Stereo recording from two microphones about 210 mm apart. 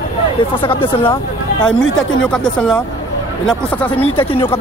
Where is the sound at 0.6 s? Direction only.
25° left (ahead or behind).